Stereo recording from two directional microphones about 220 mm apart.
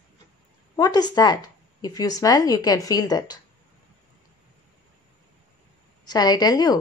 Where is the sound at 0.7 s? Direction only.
20° left (ahead or behind).